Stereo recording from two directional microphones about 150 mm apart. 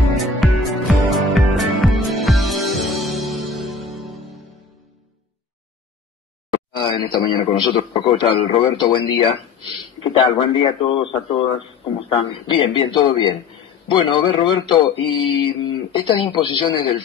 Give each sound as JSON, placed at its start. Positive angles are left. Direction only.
{"t": 0.4, "sound": "music", "side_deg": 0}
{"t": 6.5, "sound": "a man's voice", "side_deg": 30}